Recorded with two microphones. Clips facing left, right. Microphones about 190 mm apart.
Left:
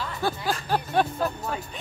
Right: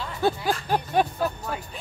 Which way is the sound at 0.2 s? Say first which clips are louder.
Right 5 dB; 20° right (ahead or behind).